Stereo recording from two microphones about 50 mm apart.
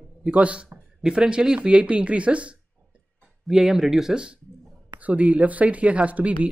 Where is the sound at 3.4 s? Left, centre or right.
Centre.